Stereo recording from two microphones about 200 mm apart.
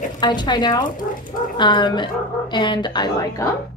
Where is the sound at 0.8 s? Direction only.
45° left (ahead or behind).